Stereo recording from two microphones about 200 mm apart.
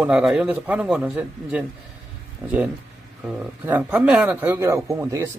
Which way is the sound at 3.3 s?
10° right (ahead or behind).